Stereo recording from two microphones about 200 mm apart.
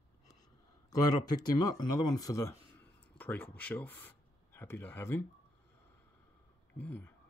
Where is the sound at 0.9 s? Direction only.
20° left (ahead or behind).